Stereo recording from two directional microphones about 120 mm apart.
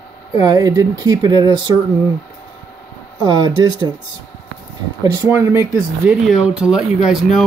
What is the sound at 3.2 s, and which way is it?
Speech, 40° right (ahead or behind).